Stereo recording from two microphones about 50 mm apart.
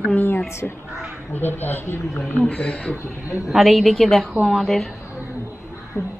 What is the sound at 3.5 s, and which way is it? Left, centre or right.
A woman's voice, centre.